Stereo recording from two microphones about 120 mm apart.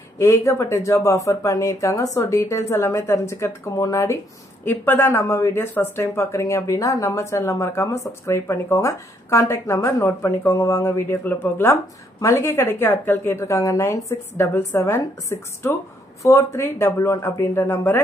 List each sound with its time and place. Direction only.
0.2 s speech: 25° left (ahead or behind)